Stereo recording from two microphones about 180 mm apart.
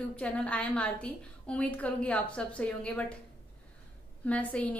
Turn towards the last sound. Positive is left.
turn(degrees=5)  # may be behind; listen again after turning